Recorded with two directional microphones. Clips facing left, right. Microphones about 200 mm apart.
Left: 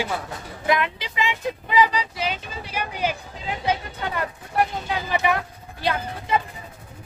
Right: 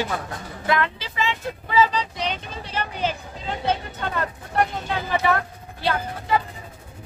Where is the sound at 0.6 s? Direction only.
15° left (ahead or behind).